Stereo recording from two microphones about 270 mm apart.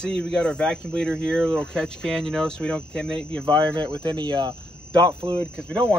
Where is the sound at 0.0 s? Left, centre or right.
Centre.